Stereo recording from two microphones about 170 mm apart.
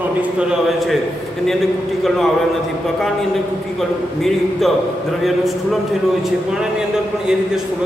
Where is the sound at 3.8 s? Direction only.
Centre (ahead or behind).